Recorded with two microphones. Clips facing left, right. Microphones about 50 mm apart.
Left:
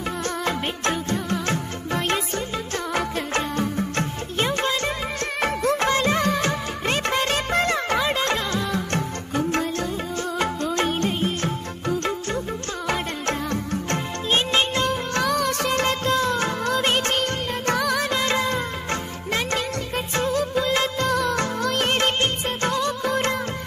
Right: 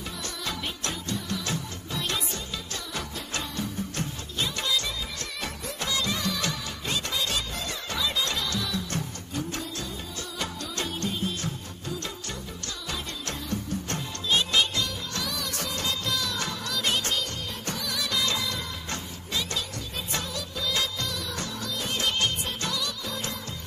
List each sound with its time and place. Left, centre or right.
0.5 s music: left
5.4 s music of bollywood: left
10.4 s music: left
20.2 s music of bollywood: left
22.0 s music of bollywood: left